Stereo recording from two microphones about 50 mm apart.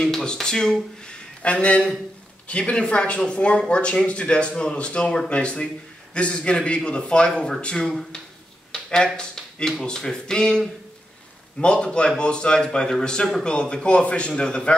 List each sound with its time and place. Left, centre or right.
0.0 s speech: centre